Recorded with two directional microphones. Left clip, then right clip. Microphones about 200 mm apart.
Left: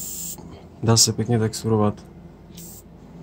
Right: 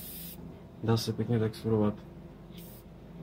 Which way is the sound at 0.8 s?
50° left (ahead or behind).